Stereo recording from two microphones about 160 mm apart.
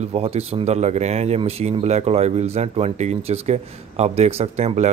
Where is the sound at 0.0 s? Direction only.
40° right (ahead or behind).